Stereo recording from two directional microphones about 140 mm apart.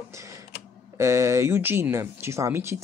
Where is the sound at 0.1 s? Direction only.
20° right (ahead or behind).